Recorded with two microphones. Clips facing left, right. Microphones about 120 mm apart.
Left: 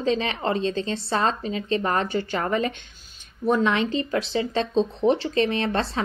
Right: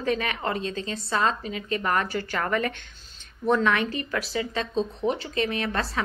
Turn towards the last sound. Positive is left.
turn(degrees=30)  # may be behind; listen again after turning